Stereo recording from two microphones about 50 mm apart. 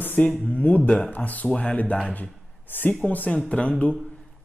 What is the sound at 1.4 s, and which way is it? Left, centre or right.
Speech, left.